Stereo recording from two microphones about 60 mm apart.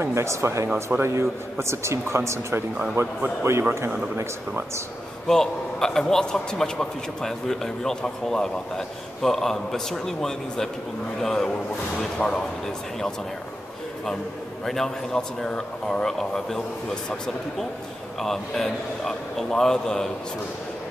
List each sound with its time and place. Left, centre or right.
0.0 s a man's voice: right
5.3 s a man's voice: centre
14.7 s a man's voice: centre
18.2 s a man's voice: centre